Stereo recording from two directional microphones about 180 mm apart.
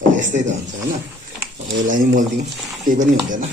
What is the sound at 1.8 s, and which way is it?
Speech, 45° right (ahead or behind).